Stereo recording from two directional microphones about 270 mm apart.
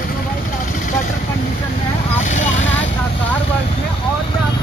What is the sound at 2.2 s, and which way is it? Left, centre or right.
Vehicle, left.